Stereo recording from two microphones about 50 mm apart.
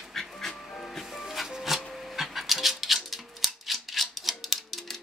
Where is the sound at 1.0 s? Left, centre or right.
Centre.